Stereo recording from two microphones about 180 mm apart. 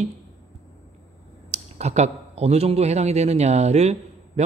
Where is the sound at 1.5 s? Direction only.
40° right (ahead or behind).